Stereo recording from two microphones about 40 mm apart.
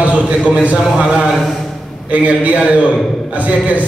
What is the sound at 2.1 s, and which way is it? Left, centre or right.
A man's voice, right.